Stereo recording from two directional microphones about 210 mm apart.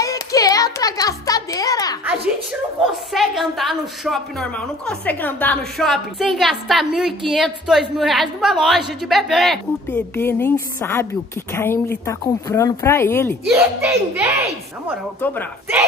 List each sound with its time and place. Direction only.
0.0 s music: 15° left (ahead or behind)
3.1 s a woman's voice: centre (ahead or behind)
13.5 s a child's voice: 10° right (ahead or behind)